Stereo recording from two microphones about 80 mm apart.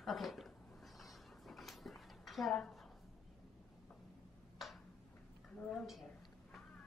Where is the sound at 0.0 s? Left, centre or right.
Centre.